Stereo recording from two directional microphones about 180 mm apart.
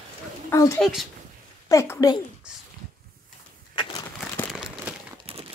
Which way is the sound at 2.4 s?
5° right (ahead or behind).